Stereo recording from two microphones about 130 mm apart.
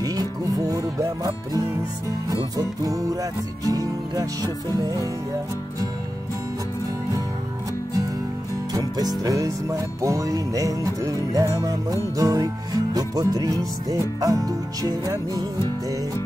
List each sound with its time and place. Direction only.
0.0 s music: 30° right (ahead or behind)
8.7 s music: 30° right (ahead or behind)